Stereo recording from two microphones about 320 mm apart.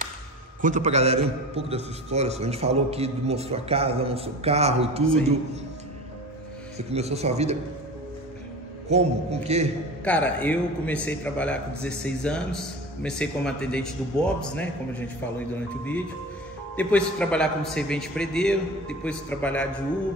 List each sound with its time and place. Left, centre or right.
0.6 s a man's voice: right
6.9 s a man's voice: centre
8.9 s a man's voice: centre
10.0 s a man's voice: centre